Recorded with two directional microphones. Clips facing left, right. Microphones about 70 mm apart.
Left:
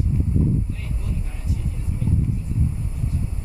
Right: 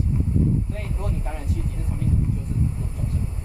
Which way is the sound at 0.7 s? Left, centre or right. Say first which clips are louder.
Right 2 dB; right.